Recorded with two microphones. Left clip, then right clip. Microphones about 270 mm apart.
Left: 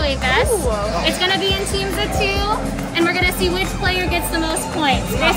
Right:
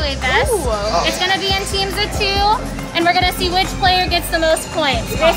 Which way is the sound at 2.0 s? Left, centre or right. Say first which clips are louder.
Right 3 dB; right.